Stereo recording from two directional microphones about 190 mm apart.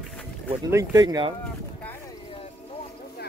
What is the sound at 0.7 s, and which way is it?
Speech, 15° right (ahead or behind).